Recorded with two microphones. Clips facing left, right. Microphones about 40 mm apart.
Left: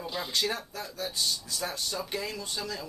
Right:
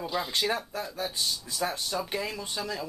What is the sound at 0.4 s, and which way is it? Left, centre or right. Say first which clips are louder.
Speech: right 2 dB; centre.